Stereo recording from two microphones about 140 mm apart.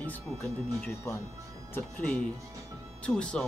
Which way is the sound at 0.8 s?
20° left (ahead or behind).